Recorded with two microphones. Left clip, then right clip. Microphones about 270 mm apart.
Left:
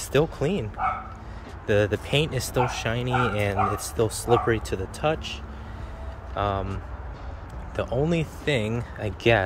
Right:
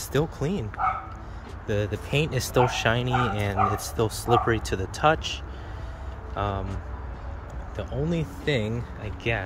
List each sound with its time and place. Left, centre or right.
0.1 s speech: centre
1.7 s speech: centre
9.0 s speech: left